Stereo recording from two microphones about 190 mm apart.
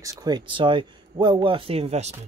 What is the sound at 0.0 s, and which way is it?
Speech, 20° right (ahead or behind).